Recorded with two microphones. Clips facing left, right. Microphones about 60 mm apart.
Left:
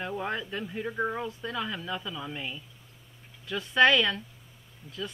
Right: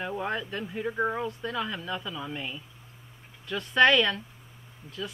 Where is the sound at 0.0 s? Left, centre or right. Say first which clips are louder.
Right 1 dB; centre.